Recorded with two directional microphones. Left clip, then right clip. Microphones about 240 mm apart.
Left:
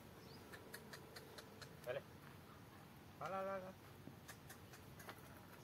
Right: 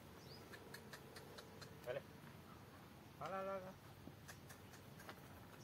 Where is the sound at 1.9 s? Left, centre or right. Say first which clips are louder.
Left 1 dB; centre.